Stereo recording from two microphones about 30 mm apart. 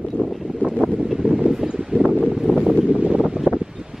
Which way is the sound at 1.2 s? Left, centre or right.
Right.